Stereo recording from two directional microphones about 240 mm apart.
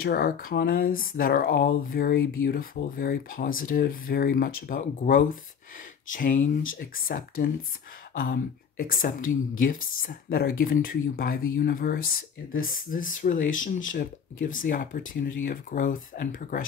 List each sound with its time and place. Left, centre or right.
0.0 s speech: left